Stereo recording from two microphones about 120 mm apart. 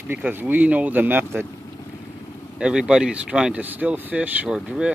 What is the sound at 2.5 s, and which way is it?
Speech, 5° right (ahead or behind).